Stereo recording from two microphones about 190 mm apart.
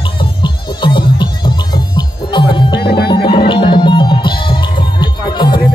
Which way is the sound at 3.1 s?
25° left (ahead or behind).